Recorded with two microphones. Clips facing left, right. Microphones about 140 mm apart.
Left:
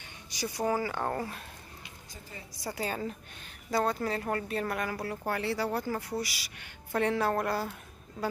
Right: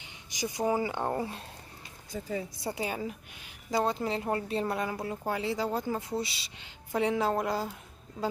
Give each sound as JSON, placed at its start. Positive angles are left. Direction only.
{"t": 0.3, "sound": "speech", "side_deg": -15}
{"t": 2.6, "sound": "speech", "side_deg": -20}
{"t": 6.9, "sound": "speech", "side_deg": -15}